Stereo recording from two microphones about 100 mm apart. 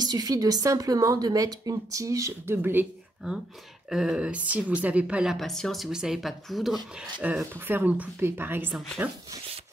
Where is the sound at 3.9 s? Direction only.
5° right (ahead or behind).